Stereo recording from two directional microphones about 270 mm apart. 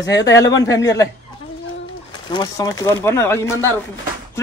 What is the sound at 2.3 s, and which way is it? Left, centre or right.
Speech, centre.